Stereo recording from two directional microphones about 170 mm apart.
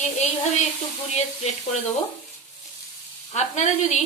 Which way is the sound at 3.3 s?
40° left (ahead or behind).